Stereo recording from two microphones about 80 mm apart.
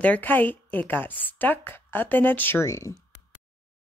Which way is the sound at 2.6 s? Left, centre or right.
Left.